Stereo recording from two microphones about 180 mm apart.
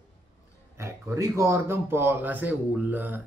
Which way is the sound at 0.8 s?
15° right (ahead or behind).